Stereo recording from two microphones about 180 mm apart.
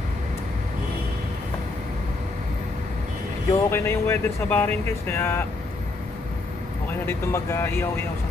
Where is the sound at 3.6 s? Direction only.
15° left (ahead or behind).